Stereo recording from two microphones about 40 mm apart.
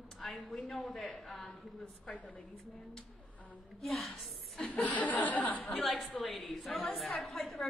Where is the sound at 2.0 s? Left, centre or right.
Left.